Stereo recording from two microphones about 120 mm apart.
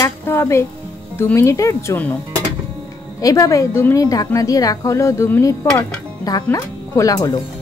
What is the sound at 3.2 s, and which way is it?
Speech, 30° left (ahead or behind).